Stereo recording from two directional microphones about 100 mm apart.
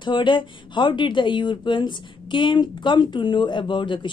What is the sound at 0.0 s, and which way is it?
Speech, 50° left (ahead or behind).